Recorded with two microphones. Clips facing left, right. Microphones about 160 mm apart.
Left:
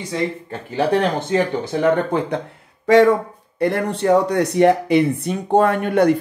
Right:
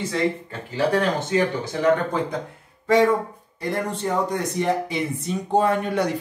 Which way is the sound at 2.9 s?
90° left.